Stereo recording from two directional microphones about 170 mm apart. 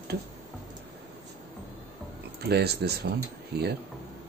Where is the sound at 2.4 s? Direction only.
75° right (ahead or behind).